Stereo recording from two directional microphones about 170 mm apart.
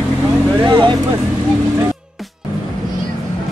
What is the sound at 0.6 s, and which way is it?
Speech, 25° right (ahead or behind).